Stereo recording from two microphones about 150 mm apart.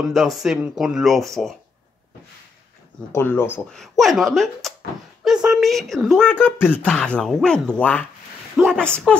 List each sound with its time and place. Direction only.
0.0 s speech: centre (ahead or behind)
3.1 s speech: 15° left (ahead or behind)
3.7 s speech: centre (ahead or behind)
8.6 s a sound: 5° right (ahead or behind)